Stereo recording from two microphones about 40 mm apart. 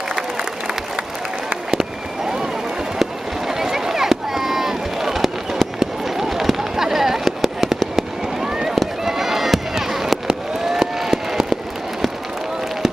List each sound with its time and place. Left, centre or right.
0.1 s crowd: centre
1.7 s fireworks: centre
3.0 s a sound: centre
7.9 s fireworks: centre
8.7 s run: centre
10.7 s fireworks: centre